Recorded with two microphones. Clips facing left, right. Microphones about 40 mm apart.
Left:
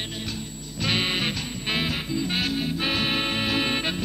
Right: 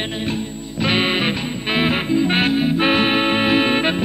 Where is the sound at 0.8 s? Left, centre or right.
Right.